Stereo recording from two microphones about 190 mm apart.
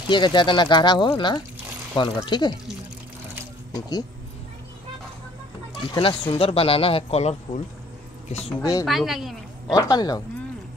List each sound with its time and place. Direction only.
0.1 s speech: 25° left (ahead or behind)
5.8 s speech: 30° left (ahead or behind)
8.5 s speech: 15° left (ahead or behind)
8.8 s a woman's voice: centre (ahead or behind)
9.8 s speech: 20° left (ahead or behind)